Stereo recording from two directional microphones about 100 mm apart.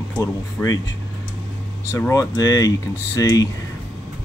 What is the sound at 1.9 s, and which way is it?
Speech, 25° left (ahead or behind).